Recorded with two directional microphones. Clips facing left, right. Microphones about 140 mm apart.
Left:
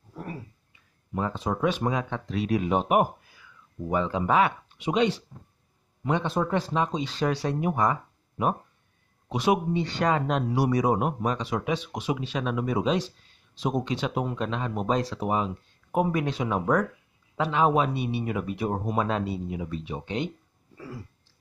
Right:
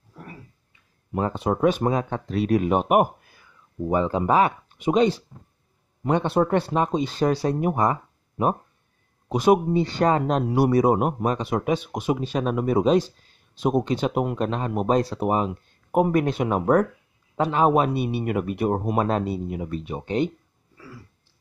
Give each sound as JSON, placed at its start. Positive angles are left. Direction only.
{"t": 1.1, "sound": "speech", "side_deg": -60}
{"t": 3.9, "sound": "speech", "side_deg": -40}
{"t": 6.0, "sound": "speech", "side_deg": -55}
{"t": 10.5, "sound": "speech", "side_deg": -55}
{"t": 20.7, "sound": "a sound", "side_deg": 40}